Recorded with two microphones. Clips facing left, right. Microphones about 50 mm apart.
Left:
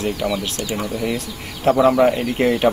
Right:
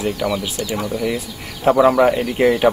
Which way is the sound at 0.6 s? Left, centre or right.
Left.